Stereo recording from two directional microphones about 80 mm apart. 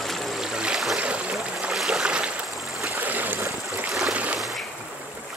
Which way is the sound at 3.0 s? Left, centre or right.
Right.